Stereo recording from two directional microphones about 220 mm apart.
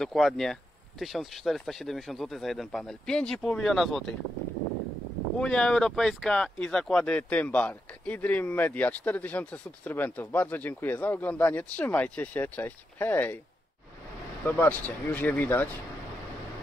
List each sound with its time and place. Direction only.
0.0 s speech: centre (ahead or behind)
5.4 s speech: 5° left (ahead or behind)
14.4 s speech: 10° left (ahead or behind)